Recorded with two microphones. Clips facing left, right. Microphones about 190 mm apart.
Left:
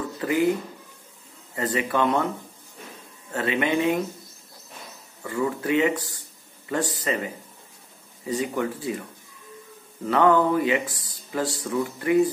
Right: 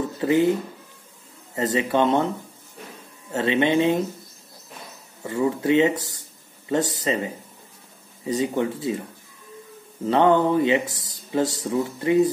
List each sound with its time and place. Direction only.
0.2 s a sound: 25° right (ahead or behind)
1.5 s speech: 25° right (ahead or behind)
3.3 s speech: 25° right (ahead or behind)
5.2 s speech: 25° right (ahead or behind)
10.0 s speech: 25° right (ahead or behind)